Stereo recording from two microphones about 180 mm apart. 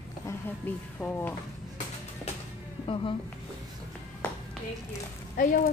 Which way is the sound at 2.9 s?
30° left (ahead or behind).